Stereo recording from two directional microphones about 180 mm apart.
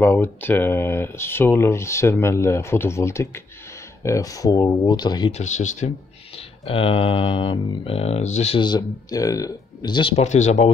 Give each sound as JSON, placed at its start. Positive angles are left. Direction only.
{"t": 0.0, "sound": "speech", "side_deg": 10}
{"t": 5.3, "sound": "speech", "side_deg": 40}
{"t": 8.5, "sound": "speech", "side_deg": 25}